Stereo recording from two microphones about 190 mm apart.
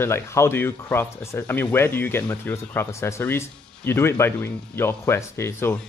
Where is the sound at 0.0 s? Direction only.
15° left (ahead or behind).